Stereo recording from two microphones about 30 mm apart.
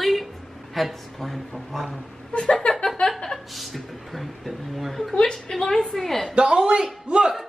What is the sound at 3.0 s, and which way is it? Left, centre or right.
Chuckle, left.